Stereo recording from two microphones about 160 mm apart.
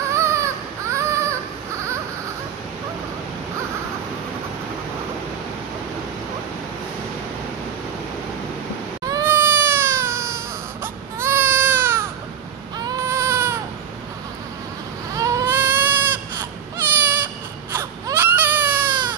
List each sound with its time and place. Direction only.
0.1 s baby cry: 20° right (ahead or behind)
9.0 s baby cry: 20° right (ahead or behind)
15.1 s baby cry: 20° right (ahead or behind)